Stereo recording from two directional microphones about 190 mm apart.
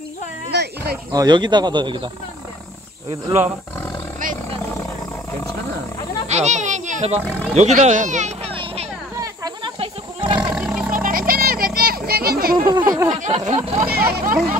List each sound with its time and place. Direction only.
0.5 s speech: 60° right (ahead or behind)
1.1 s speech: 20° right (ahead or behind)
6.2 s children playing: 35° right (ahead or behind)
7.5 s speech: 35° right (ahead or behind)
9.2 s wild animals: 20° right (ahead or behind)
10.5 s a sound: 5° right (ahead or behind)
11.0 s a sound: 50° right (ahead or behind)
12.5 s speech: 25° right (ahead or behind)
13.1 s speech: 35° right (ahead or behind)
13.8 s speech: 55° right (ahead or behind)